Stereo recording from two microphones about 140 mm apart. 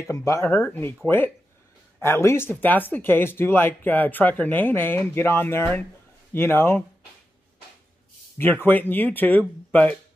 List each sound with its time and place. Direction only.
0.0 s speech: 20° left (ahead or behind)
8.4 s speech: 15° left (ahead or behind)